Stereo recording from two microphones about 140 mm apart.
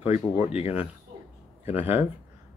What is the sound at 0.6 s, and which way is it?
Speech, 45° left (ahead or behind).